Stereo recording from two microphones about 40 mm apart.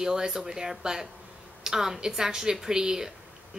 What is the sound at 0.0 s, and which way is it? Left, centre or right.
Speech, centre.